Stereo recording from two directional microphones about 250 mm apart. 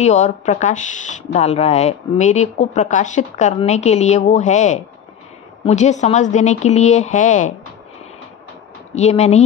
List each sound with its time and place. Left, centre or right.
0.0 s speech: left
8.9 s speech: left